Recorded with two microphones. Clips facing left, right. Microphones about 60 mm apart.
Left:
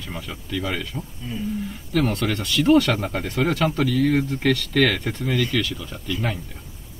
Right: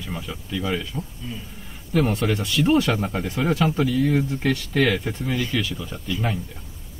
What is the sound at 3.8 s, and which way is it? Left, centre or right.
Speech, left.